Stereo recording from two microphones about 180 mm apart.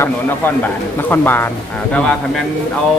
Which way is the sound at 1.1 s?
10° left (ahead or behind).